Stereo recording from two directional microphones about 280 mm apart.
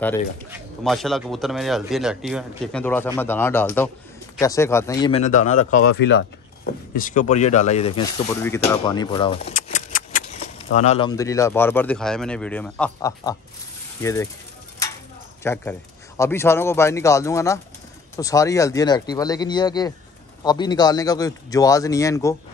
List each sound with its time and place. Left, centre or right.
0.5 s speech: centre; by 5.8 s left
5.9 s speech: left
8.3 s speech: centre
9.4 s keys jangling: left
10.7 s speech: left
15.4 s speech: centre